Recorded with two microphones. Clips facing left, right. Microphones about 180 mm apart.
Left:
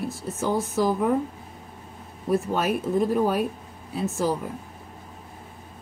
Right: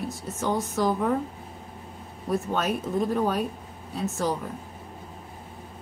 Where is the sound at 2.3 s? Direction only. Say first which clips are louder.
Left 3 dB; 5° left (ahead or behind).